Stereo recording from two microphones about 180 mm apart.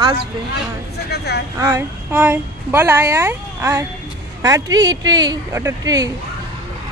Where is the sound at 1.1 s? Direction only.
65° left (ahead or behind).